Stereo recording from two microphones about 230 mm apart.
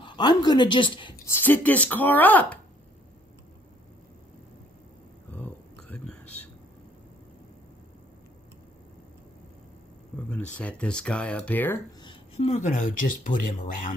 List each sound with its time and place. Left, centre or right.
0.0 s speech: centre
1.4 s speech: centre
5.3 s a sound: centre
10.3 s speech: centre
12.0 s speech: left